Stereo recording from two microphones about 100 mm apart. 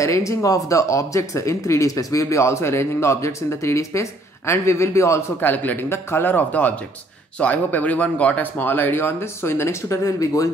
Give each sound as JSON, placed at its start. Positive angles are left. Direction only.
{"t": 0.0, "sound": "speech", "side_deg": 30}
{"t": 5.5, "sound": "speech", "side_deg": 15}